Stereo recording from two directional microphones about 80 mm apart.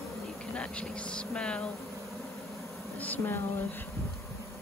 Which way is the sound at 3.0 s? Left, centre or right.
Left.